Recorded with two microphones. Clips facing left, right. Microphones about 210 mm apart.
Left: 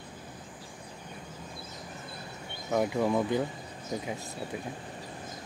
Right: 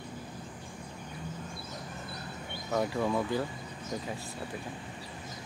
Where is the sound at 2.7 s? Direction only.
15° left (ahead or behind).